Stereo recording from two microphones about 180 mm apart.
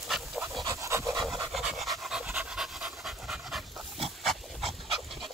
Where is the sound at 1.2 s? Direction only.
Centre (ahead or behind).